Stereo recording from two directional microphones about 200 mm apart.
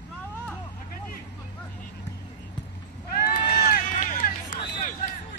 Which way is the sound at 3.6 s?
40° left (ahead or behind).